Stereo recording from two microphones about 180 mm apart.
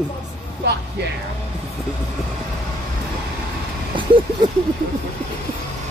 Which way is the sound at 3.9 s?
25° right (ahead or behind).